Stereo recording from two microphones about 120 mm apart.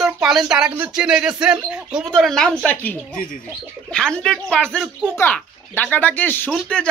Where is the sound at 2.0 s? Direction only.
5° left (ahead or behind).